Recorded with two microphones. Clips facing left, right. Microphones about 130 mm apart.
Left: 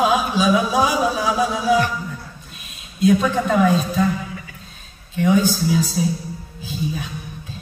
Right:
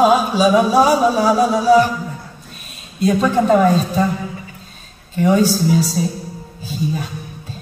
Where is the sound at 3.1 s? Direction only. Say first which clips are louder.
Right 3 dB; 40° right (ahead or behind).